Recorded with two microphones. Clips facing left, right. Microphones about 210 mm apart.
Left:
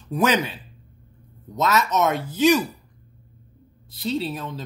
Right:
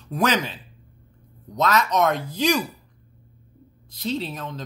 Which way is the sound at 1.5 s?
5° left (ahead or behind).